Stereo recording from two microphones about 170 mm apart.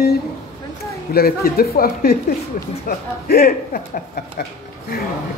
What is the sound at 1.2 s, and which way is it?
Speech, 60° left (ahead or behind).